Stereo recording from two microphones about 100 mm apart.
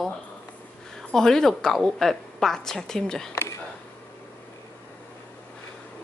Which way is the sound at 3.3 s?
30° left (ahead or behind).